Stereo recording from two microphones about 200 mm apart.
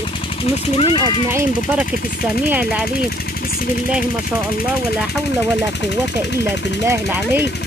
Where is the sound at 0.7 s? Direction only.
25° left (ahead or behind).